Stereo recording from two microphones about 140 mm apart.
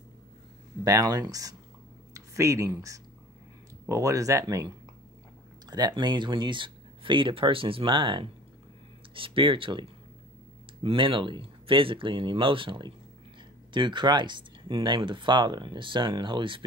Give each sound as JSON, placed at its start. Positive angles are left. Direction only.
{"t": 0.8, "sound": "speech", "side_deg": -25}